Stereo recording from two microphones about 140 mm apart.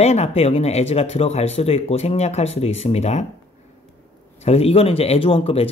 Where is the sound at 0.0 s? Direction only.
50° left (ahead or behind).